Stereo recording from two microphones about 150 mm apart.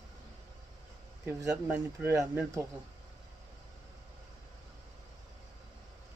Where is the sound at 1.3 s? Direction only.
20° right (ahead or behind).